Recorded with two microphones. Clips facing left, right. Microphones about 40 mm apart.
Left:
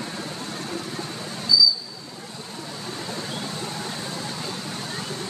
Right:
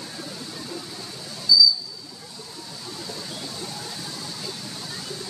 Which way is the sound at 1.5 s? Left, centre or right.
Left.